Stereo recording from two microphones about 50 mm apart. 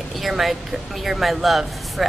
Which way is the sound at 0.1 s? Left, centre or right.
Centre.